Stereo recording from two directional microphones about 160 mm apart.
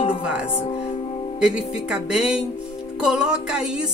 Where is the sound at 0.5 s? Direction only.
35° left (ahead or behind).